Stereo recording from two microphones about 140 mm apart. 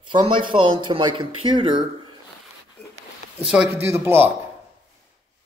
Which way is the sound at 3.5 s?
5° right (ahead or behind).